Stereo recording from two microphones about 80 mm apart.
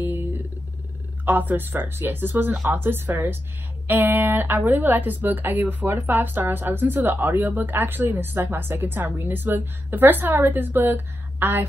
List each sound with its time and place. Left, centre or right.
1.2 s speech: right